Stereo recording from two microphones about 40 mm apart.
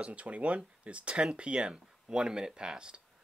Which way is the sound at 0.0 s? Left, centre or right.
Right.